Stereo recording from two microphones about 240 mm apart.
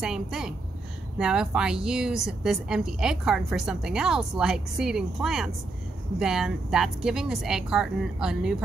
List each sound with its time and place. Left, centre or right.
0.0 s a woman's voice: centre